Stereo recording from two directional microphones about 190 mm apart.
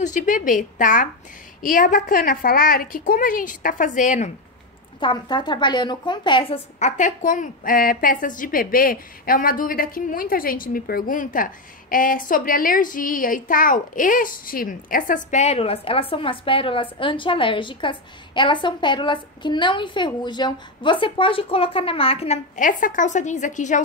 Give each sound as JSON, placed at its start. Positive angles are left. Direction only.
{"t": 0.0, "sound": "a woman's voice", "side_deg": 40}
{"t": 5.0, "sound": "a woman's voice", "side_deg": 25}
{"t": 6.8, "sound": "a woman's voice", "side_deg": 40}